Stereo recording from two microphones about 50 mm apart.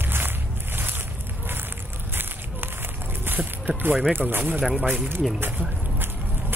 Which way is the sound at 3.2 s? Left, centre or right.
Right.